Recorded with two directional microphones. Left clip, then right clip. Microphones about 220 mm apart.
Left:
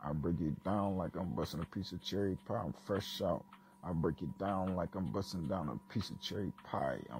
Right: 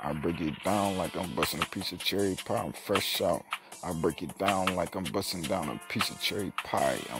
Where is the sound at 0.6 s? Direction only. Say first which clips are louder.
Right 9 dB; 25° right (ahead or behind).